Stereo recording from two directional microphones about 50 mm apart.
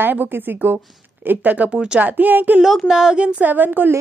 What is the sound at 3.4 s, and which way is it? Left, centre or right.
Speech, right.